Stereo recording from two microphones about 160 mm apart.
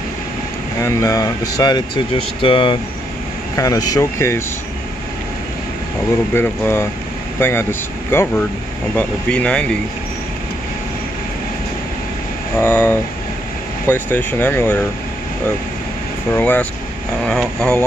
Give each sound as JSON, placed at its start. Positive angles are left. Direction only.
{"t": 0.7, "sound": "speech", "side_deg": 20}
{"t": 3.5, "sound": "speech", "side_deg": 20}
{"t": 6.3, "sound": "speech", "side_deg": 15}
{"t": 12.5, "sound": "speech", "side_deg": 10}
{"t": 16.3, "sound": "speech", "side_deg": 10}